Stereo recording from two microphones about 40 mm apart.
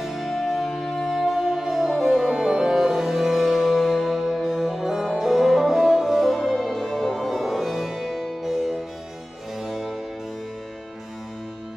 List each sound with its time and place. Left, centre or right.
0.0 s music: centre
2.2 s music: centre
2.7 s music: centre
9.6 s harpsichord: centre